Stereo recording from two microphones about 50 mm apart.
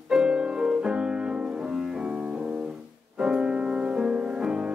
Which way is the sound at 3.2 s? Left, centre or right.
Centre.